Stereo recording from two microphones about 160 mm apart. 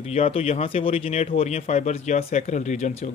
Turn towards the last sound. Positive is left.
turn(degrees=50)  # may be behind; listen again after turning